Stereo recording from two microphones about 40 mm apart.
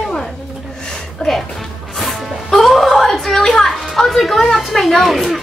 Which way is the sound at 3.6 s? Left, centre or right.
Centre.